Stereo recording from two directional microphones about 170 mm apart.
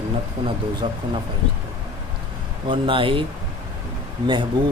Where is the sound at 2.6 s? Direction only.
30° right (ahead or behind).